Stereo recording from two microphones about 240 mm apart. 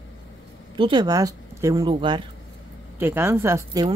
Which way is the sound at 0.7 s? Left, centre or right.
Centre.